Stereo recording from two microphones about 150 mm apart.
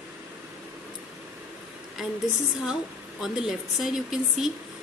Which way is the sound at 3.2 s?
Centre (ahead or behind).